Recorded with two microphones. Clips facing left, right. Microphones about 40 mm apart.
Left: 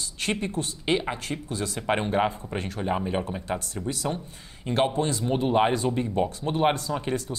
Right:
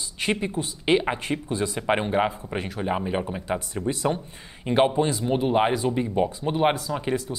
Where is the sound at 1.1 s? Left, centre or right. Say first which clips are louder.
Right 4 dB; right.